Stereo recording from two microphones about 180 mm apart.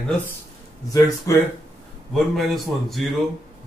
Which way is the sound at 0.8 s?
15° left (ahead or behind).